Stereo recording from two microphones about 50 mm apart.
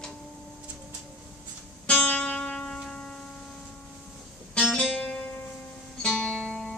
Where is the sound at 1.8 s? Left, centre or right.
Left.